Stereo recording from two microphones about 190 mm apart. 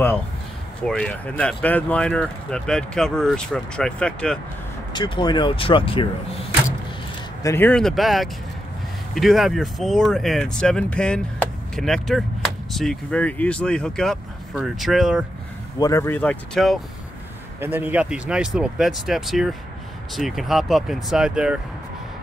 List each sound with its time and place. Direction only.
0.8 s speech: 5° left (ahead or behind)
4.9 s speech: 25° left (ahead or behind)
7.4 s speech: 10° left (ahead or behind)
15.8 s speech: 15° left (ahead or behind)
17.6 s speech: 10° right (ahead or behind)